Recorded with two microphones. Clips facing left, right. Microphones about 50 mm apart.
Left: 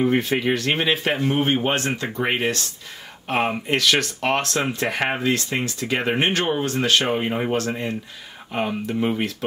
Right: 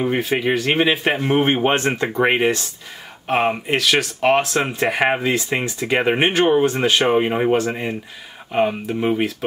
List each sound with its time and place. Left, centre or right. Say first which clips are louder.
0.0 s speech: right 1 dB; centre
1.2 s speech: right 5 dB; right
2.2 s speech: right 5 dB; right
3.3 s speech: right 3 dB; centre